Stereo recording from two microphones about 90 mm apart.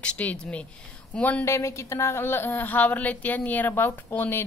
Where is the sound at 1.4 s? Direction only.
30° left (ahead or behind).